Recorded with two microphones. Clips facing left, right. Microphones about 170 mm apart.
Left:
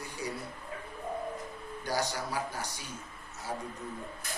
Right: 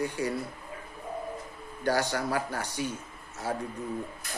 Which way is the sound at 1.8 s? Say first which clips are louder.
Right 6 dB; 60° right (ahead or behind).